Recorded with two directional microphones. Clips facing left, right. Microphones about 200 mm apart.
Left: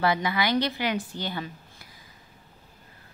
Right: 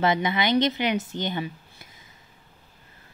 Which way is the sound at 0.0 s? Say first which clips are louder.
Right 2 dB; 20° right (ahead or behind).